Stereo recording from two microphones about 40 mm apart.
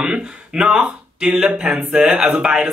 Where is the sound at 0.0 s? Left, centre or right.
Right.